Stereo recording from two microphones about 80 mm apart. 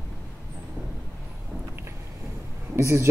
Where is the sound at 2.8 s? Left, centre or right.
Right.